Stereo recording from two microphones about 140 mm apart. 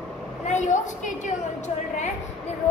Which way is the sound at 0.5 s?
60° left (ahead or behind).